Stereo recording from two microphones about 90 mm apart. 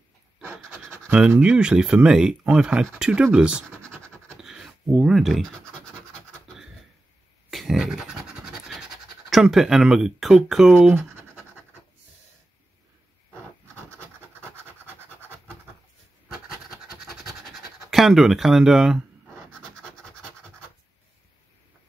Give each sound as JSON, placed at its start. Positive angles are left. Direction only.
{"t": 0.8, "sound": "scratch", "side_deg": -20}
{"t": 1.4, "sound": "speech", "side_deg": -10}
{"t": 4.4, "sound": "scratch", "side_deg": -5}
{"t": 7.5, "sound": "scratch", "side_deg": -5}
{"t": 9.3, "sound": "speech", "side_deg": -5}
{"t": 11.0, "sound": "scratch", "side_deg": -20}
{"t": 16.6, "sound": "scratch", "side_deg": -5}
{"t": 19.5, "sound": "scratch", "side_deg": 5}